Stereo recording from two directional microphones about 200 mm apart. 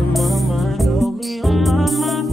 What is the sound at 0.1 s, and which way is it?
Music, centre (ahead or behind).